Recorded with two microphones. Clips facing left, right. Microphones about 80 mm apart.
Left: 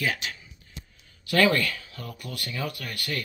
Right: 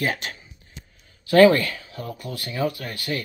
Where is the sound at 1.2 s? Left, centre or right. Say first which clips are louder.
Right 8 dB; right.